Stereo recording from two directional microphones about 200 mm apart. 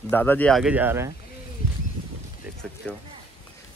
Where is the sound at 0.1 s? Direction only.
10° left (ahead or behind); by 1.1 s 10° right (ahead or behind).